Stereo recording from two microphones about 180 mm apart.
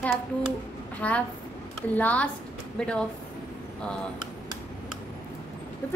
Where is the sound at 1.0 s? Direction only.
10° left (ahead or behind).